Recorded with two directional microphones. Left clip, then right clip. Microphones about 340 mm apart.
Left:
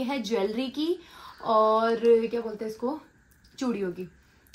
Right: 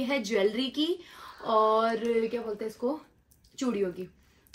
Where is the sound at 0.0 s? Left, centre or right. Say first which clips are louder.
Right 1 dB; centre.